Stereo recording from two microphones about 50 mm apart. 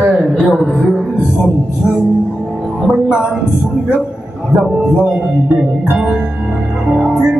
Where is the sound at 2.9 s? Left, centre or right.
Right.